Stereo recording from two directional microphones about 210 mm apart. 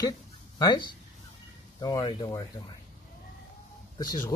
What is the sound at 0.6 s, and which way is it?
Speech, 20° left (ahead or behind).